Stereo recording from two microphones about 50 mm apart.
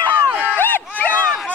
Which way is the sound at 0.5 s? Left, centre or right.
Left.